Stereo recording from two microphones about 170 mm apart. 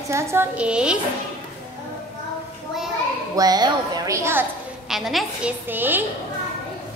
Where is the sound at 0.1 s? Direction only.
15° right (ahead or behind).